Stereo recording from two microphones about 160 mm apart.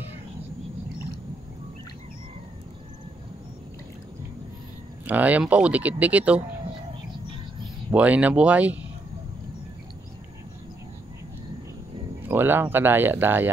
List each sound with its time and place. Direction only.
5.0 s speech: 10° right (ahead or behind)
7.9 s speech: 10° right (ahead or behind)
12.2 s speech: 10° right (ahead or behind)